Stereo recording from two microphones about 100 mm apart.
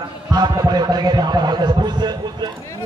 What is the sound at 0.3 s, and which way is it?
A man's voice, 45° right (ahead or behind).